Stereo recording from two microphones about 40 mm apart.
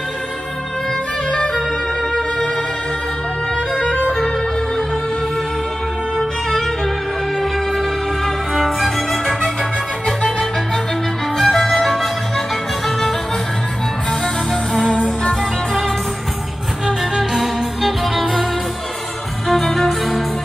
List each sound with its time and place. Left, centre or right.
1.3 s music: centre
3.7 s violin: left
8.5 s music: centre
14.2 s music: centre
16.8 s music: centre